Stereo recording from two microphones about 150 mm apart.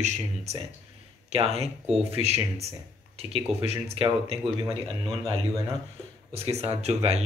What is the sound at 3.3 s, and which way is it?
Speech, 40° right (ahead or behind).